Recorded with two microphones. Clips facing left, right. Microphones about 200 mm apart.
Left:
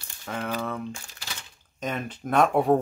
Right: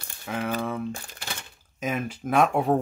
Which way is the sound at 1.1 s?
55° right (ahead or behind).